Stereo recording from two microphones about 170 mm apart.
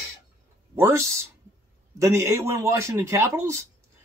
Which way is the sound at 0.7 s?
15° right (ahead or behind).